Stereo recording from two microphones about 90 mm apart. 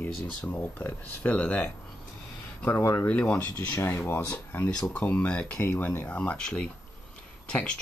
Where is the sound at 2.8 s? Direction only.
30° left (ahead or behind).